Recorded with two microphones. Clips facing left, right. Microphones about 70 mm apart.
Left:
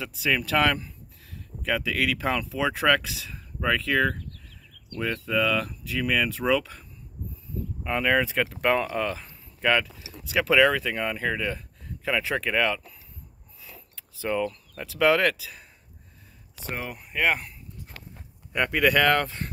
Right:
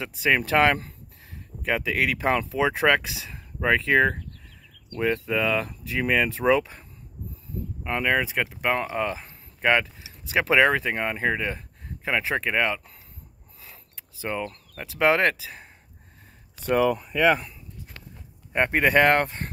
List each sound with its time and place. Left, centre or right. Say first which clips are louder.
0.0 s speech: right 3 dB; right
7.8 s speech: left 1 dB; centre
13.6 s a sound: left 1 dB; right
14.4 s speech: left 4 dB; right
18.5 s speech: right 2 dB; right